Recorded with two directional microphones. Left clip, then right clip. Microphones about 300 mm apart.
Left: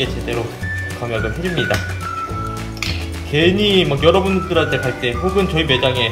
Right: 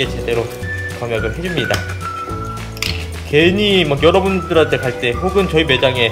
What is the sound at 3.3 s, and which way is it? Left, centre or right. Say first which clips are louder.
Speech: right 2 dB; centre.